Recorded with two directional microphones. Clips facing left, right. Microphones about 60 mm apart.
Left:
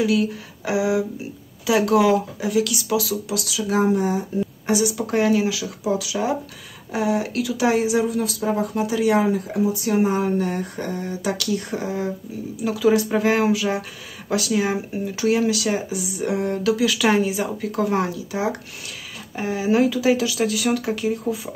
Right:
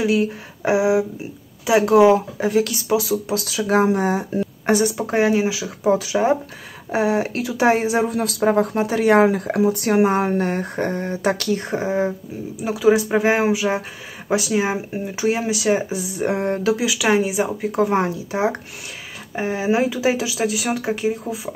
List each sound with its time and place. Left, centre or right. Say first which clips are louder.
0.0 s speech: right 1 dB; right
4.9 s speech: right 1 dB; right
5.9 s speech: right 5 dB; right
12.6 s speech: right 2 dB; centre
16.0 s speech: right 2 dB; right
16.8 s speech: left 2 dB; centre
17.3 s speech: right 3 dB; right